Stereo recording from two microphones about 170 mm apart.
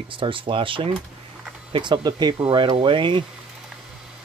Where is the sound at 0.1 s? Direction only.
30° right (ahead or behind).